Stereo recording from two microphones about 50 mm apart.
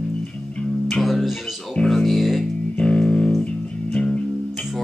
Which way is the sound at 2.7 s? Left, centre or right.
Centre.